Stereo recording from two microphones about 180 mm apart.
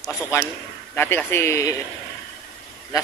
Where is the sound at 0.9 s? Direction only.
10° left (ahead or behind).